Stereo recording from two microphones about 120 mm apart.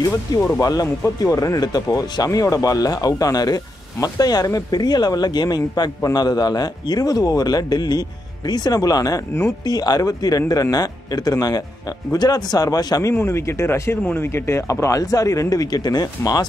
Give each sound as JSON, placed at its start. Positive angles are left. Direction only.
{"t": 0.4, "sound": "speech", "side_deg": 25}